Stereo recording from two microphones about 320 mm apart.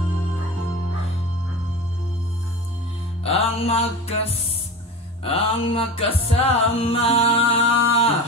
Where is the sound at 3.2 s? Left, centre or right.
Centre.